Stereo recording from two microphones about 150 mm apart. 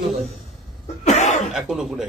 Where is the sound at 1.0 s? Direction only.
50° left (ahead or behind).